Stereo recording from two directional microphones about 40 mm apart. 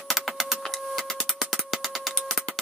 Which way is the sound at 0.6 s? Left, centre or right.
Centre.